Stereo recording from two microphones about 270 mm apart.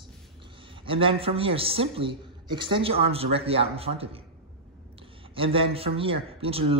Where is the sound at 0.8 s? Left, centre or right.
Centre.